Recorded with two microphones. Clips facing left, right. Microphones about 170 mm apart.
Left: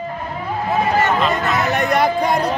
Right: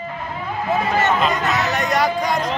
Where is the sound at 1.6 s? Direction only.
55° left (ahead or behind).